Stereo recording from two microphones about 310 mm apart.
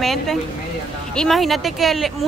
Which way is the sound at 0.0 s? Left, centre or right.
Centre.